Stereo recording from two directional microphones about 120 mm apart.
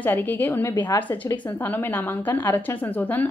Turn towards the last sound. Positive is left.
turn(degrees=15)  # may be behind; listen again after turning